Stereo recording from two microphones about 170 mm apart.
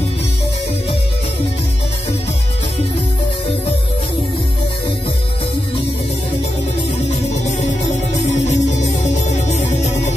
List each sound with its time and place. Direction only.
8.6 s music: 45° left (ahead or behind)